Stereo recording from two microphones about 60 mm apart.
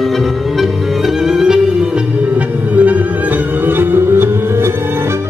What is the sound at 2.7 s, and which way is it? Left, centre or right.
Music, right.